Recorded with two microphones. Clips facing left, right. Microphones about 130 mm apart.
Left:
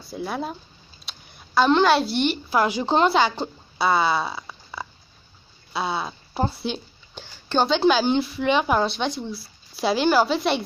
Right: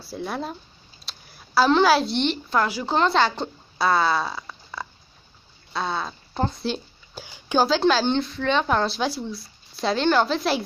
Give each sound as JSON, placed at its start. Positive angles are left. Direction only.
{"t": 0.0, "sound": "a woman's voice", "side_deg": 0}
{"t": 2.6, "sound": "speech", "side_deg": 20}
{"t": 3.1, "sound": "speech", "side_deg": 5}
{"t": 5.7, "sound": "a sound", "side_deg": 5}
{"t": 7.2, "sound": "a sound", "side_deg": -15}
{"t": 7.6, "sound": "speech", "side_deg": 0}